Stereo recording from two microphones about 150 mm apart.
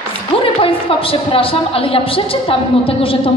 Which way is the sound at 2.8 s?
40° left (ahead or behind).